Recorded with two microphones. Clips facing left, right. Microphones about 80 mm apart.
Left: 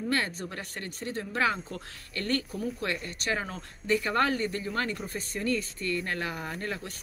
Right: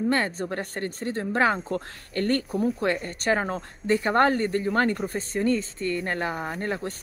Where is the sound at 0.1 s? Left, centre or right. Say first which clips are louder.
Right 5 dB; right.